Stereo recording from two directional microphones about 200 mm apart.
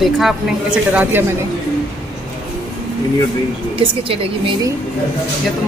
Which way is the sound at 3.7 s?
25° right (ahead or behind).